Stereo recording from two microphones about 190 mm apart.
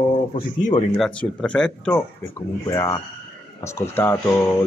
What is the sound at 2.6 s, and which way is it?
A man's voice, 15° left (ahead or behind).